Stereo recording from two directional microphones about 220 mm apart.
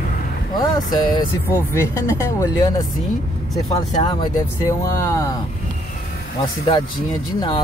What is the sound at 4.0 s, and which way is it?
Speech, 20° left (ahead or behind).